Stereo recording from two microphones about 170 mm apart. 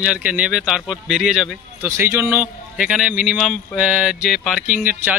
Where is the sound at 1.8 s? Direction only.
15° right (ahead or behind).